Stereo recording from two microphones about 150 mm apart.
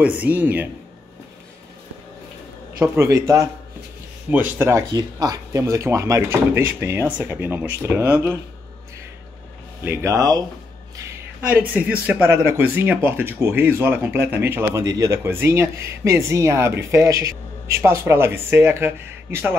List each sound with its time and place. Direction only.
0.0 s speech: 10° right (ahead or behind)
2.8 s speech: 20° right (ahead or behind)
9.8 s speech: 20° right (ahead or behind)
11.4 s speech: 10° right (ahead or behind)